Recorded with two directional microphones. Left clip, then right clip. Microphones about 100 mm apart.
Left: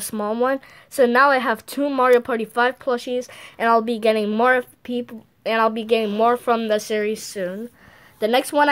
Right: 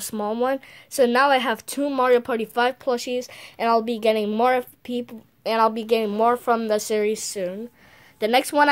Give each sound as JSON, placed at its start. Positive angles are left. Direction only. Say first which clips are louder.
{"t": 0.0, "sound": "speech", "louder": "left 2 dB", "side_deg": 0}
{"t": 3.2, "sound": "a woman's voice", "louder": "left 2 dB", "side_deg": 0}
{"t": 6.6, "sound": "a woman's voice", "louder": "left 1 dB", "side_deg": -15}